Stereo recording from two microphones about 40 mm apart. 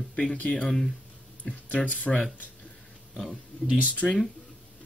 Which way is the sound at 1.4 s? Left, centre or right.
Left.